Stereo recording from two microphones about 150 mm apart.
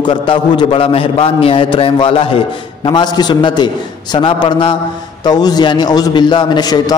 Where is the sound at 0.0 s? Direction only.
35° left (ahead or behind).